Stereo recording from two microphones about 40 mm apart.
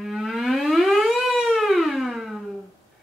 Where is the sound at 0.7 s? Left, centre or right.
Centre.